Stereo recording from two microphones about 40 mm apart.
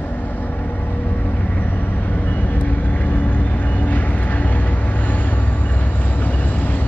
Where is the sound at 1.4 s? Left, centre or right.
Left.